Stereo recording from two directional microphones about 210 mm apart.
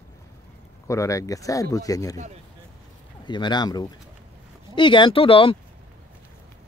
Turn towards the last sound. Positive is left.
turn(degrees=25)  # may be behind; listen again after turning